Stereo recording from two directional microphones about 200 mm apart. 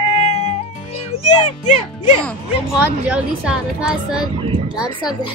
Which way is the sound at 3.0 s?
5° right (ahead or behind).